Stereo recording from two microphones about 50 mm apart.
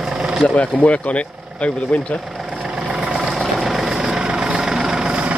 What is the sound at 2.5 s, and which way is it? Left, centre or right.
Vehicle, centre.